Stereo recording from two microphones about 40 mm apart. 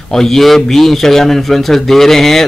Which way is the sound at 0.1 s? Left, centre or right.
Centre.